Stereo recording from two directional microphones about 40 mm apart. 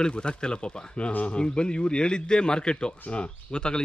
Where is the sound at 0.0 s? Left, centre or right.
Left.